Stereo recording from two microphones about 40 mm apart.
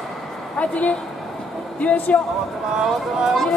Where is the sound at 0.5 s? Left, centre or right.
Left.